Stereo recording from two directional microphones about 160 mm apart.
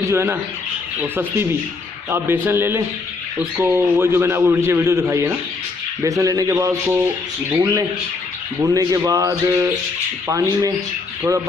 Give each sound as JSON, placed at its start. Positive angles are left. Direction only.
{"t": 0.0, "sound": "a man's voice", "side_deg": -15}